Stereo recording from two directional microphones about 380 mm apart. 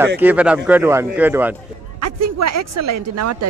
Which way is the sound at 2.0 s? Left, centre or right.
Right.